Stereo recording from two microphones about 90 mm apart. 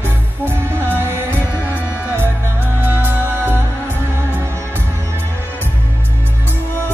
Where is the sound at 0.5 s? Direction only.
25° right (ahead or behind).